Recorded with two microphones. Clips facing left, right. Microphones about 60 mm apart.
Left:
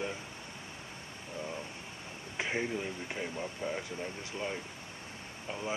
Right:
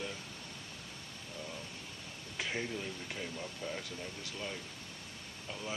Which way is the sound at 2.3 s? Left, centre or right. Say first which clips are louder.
Left 4 dB; left.